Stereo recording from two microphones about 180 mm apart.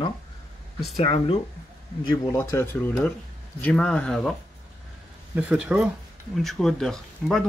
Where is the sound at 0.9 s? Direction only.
35° left (ahead or behind).